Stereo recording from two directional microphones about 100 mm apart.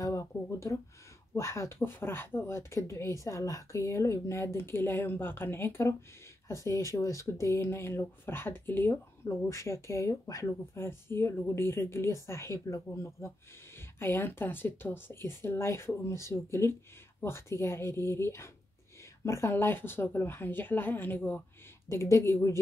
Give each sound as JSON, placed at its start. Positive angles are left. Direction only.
{"t": 0.0, "sound": "a sound", "side_deg": 30}
{"t": 1.3, "sound": "speech", "side_deg": 30}
{"t": 21.8, "sound": "speech", "side_deg": 30}